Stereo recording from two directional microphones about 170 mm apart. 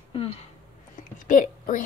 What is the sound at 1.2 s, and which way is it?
Speech, 50° left (ahead or behind).